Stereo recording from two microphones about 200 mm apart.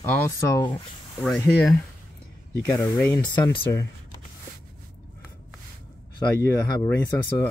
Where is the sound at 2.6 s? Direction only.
15° left (ahead or behind).